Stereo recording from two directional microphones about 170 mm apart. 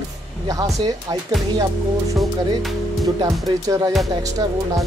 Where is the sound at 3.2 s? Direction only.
20° right (ahead or behind).